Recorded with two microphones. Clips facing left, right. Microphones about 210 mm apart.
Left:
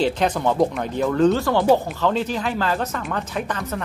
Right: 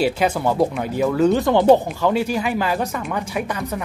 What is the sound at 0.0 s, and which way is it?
Speech, 10° right (ahead or behind).